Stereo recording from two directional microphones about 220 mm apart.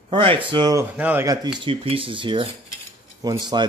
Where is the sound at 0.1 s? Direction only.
25° right (ahead or behind).